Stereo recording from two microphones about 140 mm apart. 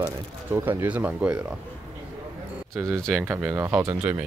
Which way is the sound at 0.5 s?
15° right (ahead or behind).